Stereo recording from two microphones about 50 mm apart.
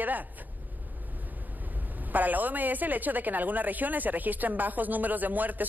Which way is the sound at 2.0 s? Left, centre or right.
Right.